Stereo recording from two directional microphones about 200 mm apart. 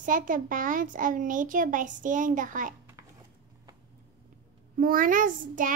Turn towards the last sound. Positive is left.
turn(degrees=-40)  # may be behind; listen again after turning